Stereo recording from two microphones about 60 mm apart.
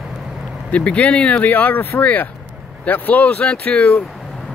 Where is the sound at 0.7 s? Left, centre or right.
Left.